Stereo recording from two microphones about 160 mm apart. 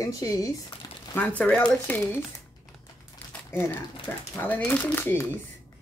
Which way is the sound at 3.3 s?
15° left (ahead or behind).